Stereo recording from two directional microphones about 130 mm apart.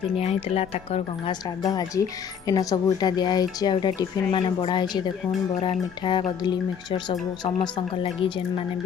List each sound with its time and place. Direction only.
0.2 s speech: 50° left (ahead or behind)
1.6 s speech: 30° left (ahead or behind)